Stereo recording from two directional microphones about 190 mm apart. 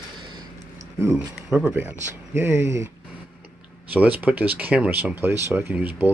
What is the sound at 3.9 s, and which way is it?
Speech, 10° right (ahead or behind).